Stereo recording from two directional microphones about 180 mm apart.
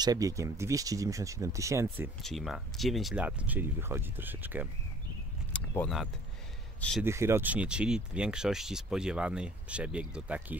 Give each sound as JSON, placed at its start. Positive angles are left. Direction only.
{"t": 0.0, "sound": "speech", "side_deg": -20}
{"t": 2.2, "sound": "speech", "side_deg": 0}
{"t": 5.5, "sound": "keys jangling", "side_deg": 5}
{"t": 7.0, "sound": "speech", "side_deg": -15}